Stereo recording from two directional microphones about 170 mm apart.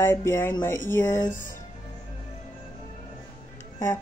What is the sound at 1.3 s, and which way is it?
Speech, 50° left (ahead or behind).